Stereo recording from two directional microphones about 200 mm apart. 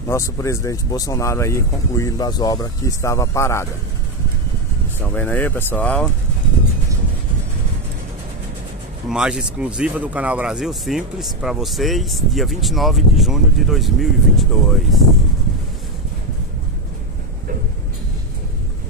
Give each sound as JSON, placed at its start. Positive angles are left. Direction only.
{"t": 0.1, "sound": "speech", "side_deg": 15}
{"t": 5.1, "sound": "speech", "side_deg": 10}
{"t": 9.1, "sound": "speech", "side_deg": -5}